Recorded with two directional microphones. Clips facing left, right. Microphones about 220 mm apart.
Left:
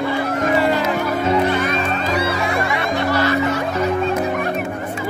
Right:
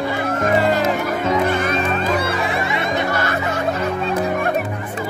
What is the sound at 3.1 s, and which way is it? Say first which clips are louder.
Music: left 4 dB; 50° right (ahead or behind).